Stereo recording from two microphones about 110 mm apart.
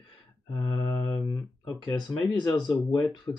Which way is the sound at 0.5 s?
30° left (ahead or behind).